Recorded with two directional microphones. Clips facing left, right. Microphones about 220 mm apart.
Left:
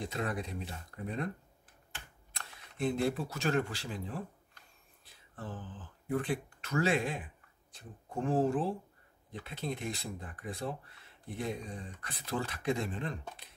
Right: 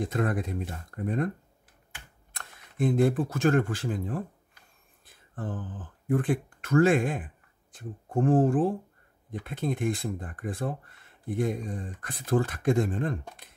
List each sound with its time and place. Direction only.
0.0 s speech: 50° right (ahead or behind)
2.3 s speech: 50° right (ahead or behind)